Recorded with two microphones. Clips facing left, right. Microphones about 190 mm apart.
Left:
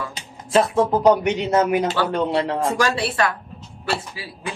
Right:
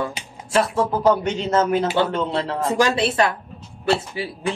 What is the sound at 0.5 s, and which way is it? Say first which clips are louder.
Speech: left 3 dB; 20° left (ahead or behind).